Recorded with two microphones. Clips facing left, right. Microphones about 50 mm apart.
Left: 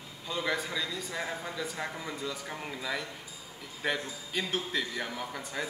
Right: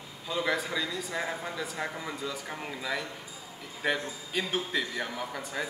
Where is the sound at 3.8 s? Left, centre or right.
Centre.